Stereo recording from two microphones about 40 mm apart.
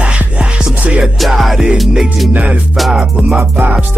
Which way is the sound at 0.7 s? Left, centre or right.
Right.